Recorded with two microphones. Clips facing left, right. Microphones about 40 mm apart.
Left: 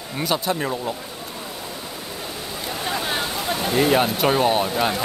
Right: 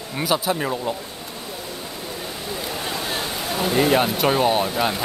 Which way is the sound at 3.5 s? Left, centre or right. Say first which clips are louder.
Right 1 dB; centre.